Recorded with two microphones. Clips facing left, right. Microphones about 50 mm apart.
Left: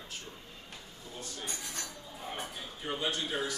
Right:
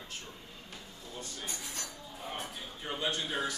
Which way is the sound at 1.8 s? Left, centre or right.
Centre.